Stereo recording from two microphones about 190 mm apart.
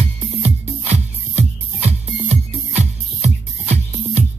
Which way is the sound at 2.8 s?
35° right (ahead or behind).